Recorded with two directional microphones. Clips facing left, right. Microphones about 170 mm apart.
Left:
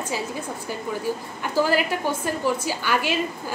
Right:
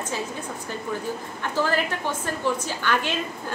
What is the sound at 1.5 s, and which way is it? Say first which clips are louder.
A woman's voice: left 3 dB; 10° left (ahead or behind).